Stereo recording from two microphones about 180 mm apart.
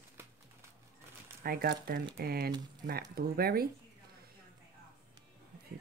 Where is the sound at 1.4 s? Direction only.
55° right (ahead or behind).